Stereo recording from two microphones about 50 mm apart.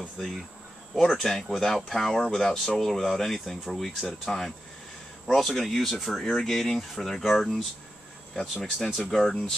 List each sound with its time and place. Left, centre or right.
0.2 s speech: centre
8.4 s speech: centre
8.7 s speech: centre